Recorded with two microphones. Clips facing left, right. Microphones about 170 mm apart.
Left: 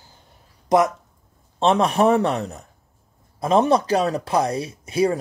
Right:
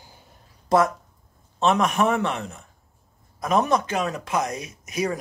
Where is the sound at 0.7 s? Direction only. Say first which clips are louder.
Left 2 dB; 20° left (ahead or behind).